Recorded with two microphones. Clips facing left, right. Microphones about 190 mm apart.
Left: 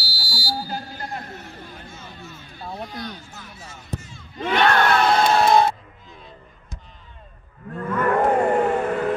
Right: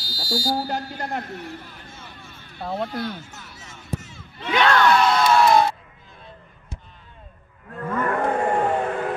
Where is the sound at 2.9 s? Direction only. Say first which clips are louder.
Right 5 dB; 15° left (ahead or behind).